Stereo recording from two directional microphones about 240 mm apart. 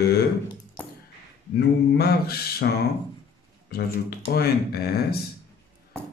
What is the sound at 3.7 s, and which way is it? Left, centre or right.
Speech, left.